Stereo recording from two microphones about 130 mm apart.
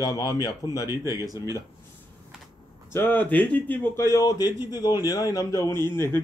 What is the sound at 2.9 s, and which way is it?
Speech, 15° left (ahead or behind).